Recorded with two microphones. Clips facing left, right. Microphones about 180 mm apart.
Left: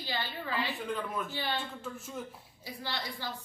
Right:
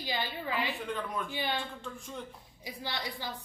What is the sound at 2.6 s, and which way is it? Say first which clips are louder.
Speech: right 1 dB; 15° right (ahead or behind).